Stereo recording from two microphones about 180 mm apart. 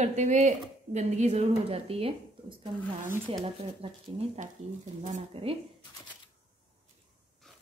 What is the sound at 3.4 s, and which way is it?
A woman's voice, 30° right (ahead or behind).